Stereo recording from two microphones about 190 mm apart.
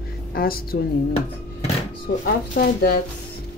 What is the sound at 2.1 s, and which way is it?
Speech, 60° left (ahead or behind).